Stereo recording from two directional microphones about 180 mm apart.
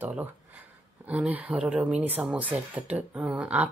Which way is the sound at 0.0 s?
10° right (ahead or behind).